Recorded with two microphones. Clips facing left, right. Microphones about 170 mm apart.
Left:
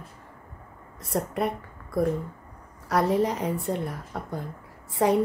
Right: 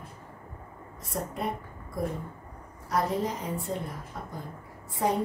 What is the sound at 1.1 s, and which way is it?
Speech, 70° left (ahead or behind).